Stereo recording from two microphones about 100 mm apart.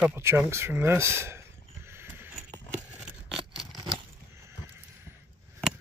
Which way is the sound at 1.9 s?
25° right (ahead or behind).